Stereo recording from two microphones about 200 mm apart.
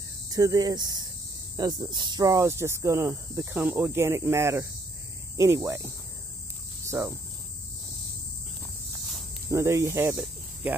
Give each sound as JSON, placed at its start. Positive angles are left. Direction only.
{"t": 0.3, "sound": "speech", "side_deg": -20}
{"t": 9.5, "sound": "speech", "side_deg": -15}